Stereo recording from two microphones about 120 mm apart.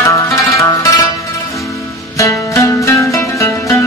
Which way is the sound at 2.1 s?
25° left (ahead or behind).